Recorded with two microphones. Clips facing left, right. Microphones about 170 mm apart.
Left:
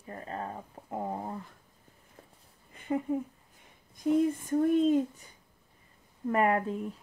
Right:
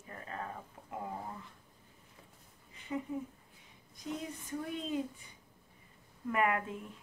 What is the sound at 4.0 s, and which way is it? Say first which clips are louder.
Speech: left 15 dB; 50° left (ahead or behind).